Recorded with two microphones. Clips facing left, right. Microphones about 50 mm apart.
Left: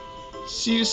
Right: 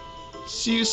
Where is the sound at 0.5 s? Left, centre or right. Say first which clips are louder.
Left 1 dB; centre.